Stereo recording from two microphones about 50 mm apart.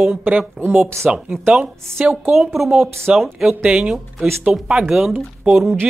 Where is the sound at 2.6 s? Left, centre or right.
Centre.